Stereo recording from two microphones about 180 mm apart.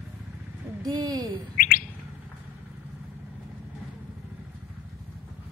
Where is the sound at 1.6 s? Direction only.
50° left (ahead or behind).